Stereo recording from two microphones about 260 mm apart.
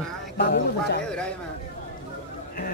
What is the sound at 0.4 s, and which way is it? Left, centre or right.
Speech, left.